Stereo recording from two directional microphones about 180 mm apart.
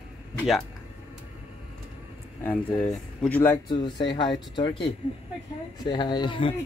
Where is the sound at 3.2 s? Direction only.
10° left (ahead or behind).